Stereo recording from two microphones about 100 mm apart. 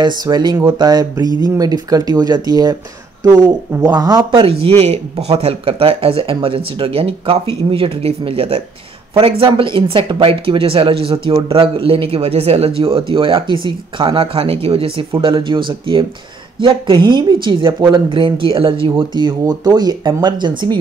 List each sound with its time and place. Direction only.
0.0 s speech: 45° right (ahead or behind)
3.8 s speech: 40° right (ahead or behind)
4.3 s speech: 65° right (ahead or behind)
9.6 s a woman's voice: 60° right (ahead or behind)